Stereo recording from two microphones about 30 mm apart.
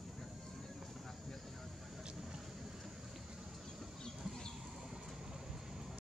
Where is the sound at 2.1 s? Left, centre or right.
Right.